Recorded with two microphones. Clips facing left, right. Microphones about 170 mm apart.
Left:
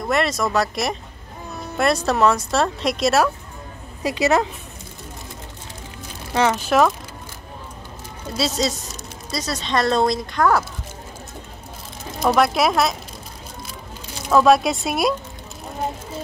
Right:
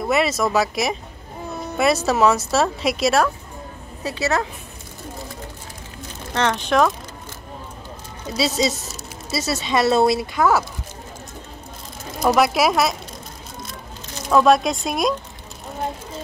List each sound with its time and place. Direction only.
0.0 s speech: 5° right (ahead or behind)
4.0 s speech: 15° left (ahead or behind)
6.3 s speech: 5° left (ahead or behind)
8.3 s speech: centre (ahead or behind)
12.2 s speech: centre (ahead or behind)
14.3 s speech: centre (ahead or behind)